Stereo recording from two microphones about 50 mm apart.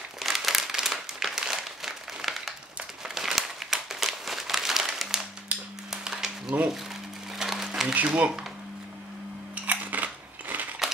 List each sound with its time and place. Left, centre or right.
0.2 s crumpling: centre
5.9 s a sound: centre
7.3 s crumpling: centre
7.9 s speech: right
9.7 s scissors: right